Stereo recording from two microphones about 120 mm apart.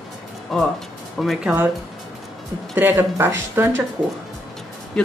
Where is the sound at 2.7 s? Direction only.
20° right (ahead or behind).